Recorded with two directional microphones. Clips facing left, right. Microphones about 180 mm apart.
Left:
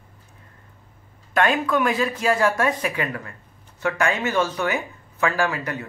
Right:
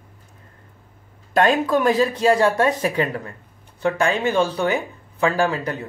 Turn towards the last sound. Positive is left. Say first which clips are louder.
# right 3 dB
turn(degrees=-30)  # may be behind; listen again after turning